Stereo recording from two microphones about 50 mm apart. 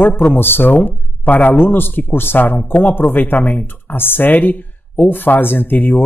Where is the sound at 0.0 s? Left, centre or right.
Left.